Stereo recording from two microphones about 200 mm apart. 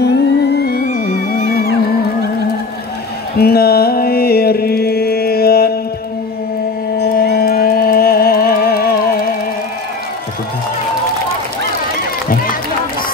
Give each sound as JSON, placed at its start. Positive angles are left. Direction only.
{"t": 0.0, "sound": "music", "side_deg": 55}
{"t": 3.3, "sound": "music", "side_deg": 50}
{"t": 7.0, "sound": "music", "side_deg": 50}